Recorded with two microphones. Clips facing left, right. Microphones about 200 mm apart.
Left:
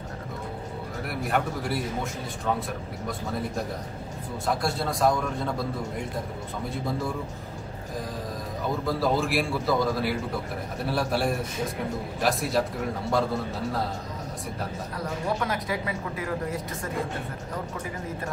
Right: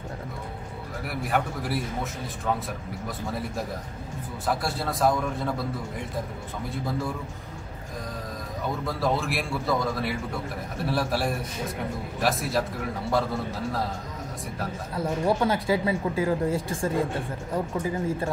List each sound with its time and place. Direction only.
1.0 s a man's voice: centre (ahead or behind)
3.1 s a man's voice: centre (ahead or behind)
6.7 s a man's voice: centre (ahead or behind)
8.8 s a man's voice: centre (ahead or behind)
15.0 s speech: 30° right (ahead or behind)